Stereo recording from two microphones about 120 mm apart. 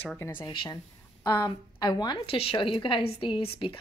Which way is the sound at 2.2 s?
50° left (ahead or behind).